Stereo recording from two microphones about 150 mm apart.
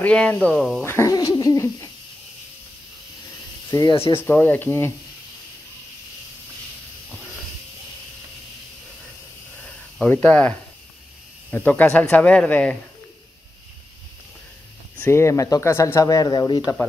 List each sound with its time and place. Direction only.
0.0 s speech: 10° left (ahead or behind)
0.8 s speech: 20° left (ahead or behind)
3.7 s speech: 25° left (ahead or behind)
9.6 s snake: 10° left (ahead or behind)
11.5 s speech: 10° left (ahead or behind)
15.0 s speech: 15° left (ahead or behind)